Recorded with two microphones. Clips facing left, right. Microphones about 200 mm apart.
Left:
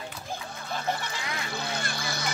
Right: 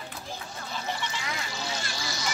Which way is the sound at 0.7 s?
55° left (ahead or behind).